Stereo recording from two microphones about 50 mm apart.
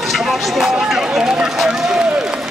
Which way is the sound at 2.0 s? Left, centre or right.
Right.